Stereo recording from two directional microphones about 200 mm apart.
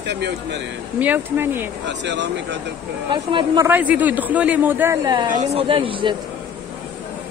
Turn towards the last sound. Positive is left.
turn(degrees=-25)  # may be behind; listen again after turning